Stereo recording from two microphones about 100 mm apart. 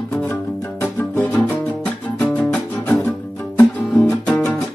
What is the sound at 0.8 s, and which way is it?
Music, 15° left (ahead or behind).